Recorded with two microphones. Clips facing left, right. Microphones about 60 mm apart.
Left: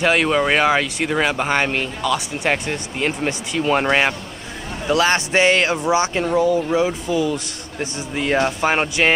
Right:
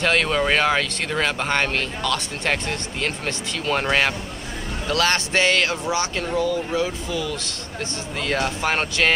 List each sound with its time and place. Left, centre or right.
0.0 s speech: centre